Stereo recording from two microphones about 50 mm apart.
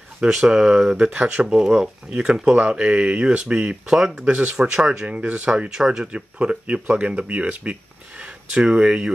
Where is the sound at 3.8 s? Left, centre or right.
Centre.